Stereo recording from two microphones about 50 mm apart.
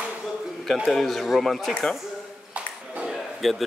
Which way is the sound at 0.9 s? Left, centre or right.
Centre.